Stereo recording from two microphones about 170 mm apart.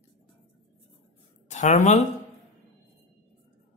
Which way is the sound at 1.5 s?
45° left (ahead or behind).